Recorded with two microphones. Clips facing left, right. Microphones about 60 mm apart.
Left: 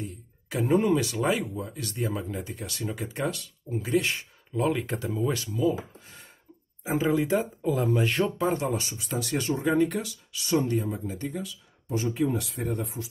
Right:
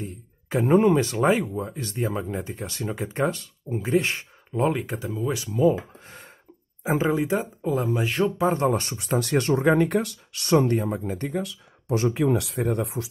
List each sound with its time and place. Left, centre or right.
0.0 s speech: right
4.7 s speech: centre
5.5 s speech: right
7.1 s speech: right
7.9 s speech: centre
8.5 s speech: right